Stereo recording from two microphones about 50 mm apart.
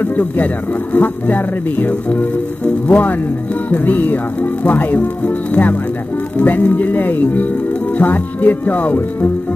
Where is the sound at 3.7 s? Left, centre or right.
Left.